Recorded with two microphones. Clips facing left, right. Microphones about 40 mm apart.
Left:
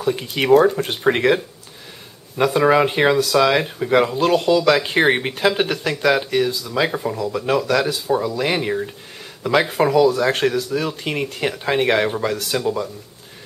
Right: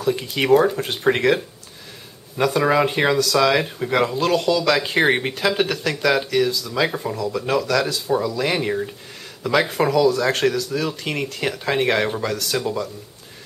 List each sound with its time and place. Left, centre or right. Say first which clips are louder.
0.0 s speech: even; centre